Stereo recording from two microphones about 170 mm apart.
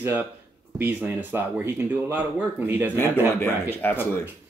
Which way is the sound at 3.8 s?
10° left (ahead or behind).